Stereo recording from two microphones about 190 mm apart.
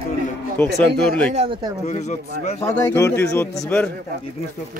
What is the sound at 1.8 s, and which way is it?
Speech, 35° left (ahead or behind).